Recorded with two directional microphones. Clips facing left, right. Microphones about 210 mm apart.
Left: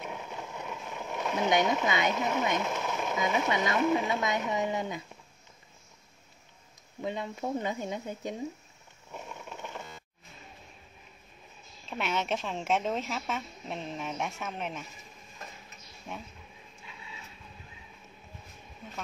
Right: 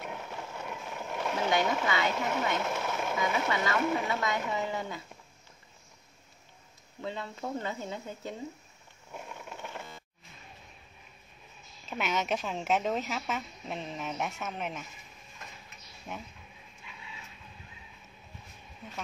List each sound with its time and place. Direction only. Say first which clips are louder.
0.3 s vehicle: even; 15° left (ahead or behind)
0.7 s vehicle: even; centre (ahead or behind)
1.4 s speech: left 3 dB; 20° left (ahead or behind)
2.6 s a sound: even; 5° right (ahead or behind)
3.2 s speech: left 2 dB; 20° left (ahead or behind)
7.0 s speech: left 3 dB; 15° left (ahead or behind)
9.1 s a sound: left 1 dB; 5° right (ahead or behind)
11.9 s speech: even; centre (ahead or behind)
16.1 s speech: even; 5° right (ahead or behind)